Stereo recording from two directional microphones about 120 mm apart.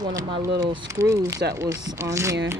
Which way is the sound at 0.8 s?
25° right (ahead or behind).